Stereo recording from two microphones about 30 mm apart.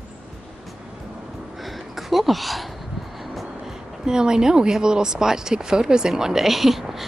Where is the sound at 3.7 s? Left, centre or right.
Right.